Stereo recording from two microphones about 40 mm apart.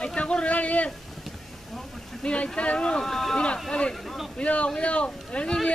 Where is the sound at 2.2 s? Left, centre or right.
Left.